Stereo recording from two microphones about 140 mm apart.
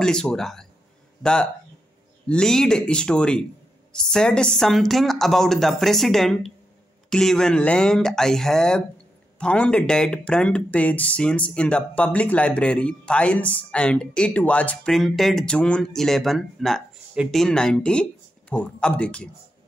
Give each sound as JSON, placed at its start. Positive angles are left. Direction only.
{"t": 0.0, "sound": "a woman's voice", "side_deg": 5}